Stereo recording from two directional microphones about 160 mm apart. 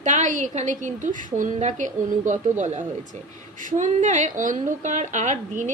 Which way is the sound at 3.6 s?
50° right (ahead or behind).